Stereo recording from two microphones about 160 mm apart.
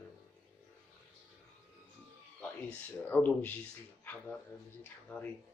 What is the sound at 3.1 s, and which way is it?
Speech, 10° left (ahead or behind).